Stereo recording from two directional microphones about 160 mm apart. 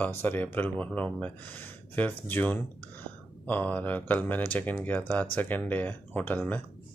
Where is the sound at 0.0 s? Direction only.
15° left (ahead or behind).